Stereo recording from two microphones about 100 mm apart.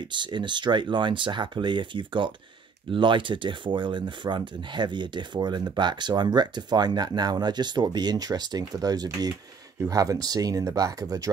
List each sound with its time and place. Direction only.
0.1 s speech: 50° right (ahead or behind)